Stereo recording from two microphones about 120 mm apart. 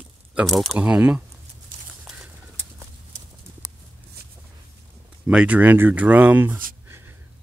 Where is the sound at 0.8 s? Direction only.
10° right (ahead or behind).